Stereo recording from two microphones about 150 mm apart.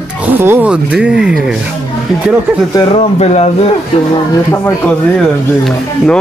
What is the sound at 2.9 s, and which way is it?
Speech, 45° left (ahead or behind).